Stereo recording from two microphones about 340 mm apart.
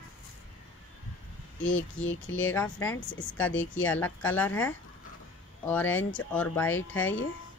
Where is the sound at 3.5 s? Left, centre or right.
Left.